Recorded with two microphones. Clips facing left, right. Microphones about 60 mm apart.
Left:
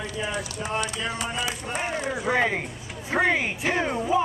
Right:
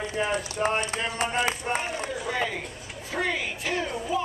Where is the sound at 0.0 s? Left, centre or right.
Right.